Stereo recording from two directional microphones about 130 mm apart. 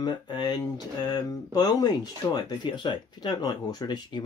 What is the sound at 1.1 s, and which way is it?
Speech, 30° left (ahead or behind).